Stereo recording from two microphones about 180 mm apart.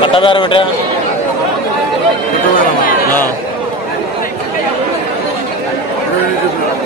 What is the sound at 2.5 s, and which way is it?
Music, 50° left (ahead or behind).